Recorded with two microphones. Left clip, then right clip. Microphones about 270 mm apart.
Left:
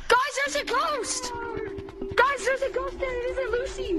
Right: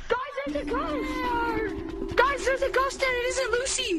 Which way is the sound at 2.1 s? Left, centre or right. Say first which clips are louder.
Left 1 dB; centre.